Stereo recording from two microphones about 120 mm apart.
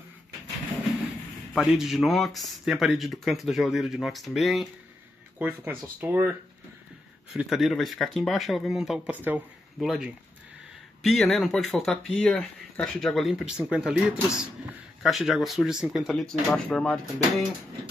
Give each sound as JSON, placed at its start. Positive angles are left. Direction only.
{"t": 1.5, "sound": "speech", "side_deg": 0}
{"t": 5.4, "sound": "speech", "side_deg": -15}
{"t": 7.3, "sound": "speech", "side_deg": 0}
{"t": 9.1, "sound": "speech", "side_deg": -15}
{"t": 9.8, "sound": "speech", "side_deg": -5}